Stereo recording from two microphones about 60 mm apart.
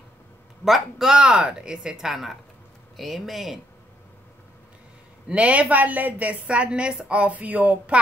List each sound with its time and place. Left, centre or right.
0.7 s speech: centre
5.3 s a woman's voice: right